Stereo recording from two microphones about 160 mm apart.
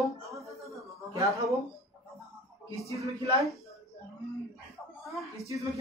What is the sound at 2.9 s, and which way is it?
Speech, 20° right (ahead or behind).